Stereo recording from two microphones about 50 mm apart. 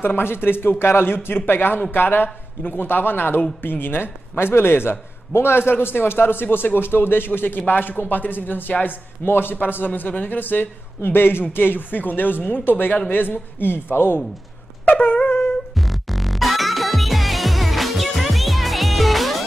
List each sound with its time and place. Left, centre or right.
0.0 s a man's voice: left
14.9 s a man's voice: left
15.7 s music: centre